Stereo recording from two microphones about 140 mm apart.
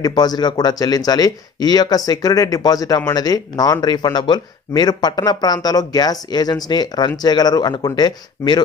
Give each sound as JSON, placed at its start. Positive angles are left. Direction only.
{"t": 0.0, "sound": "speech", "side_deg": 30}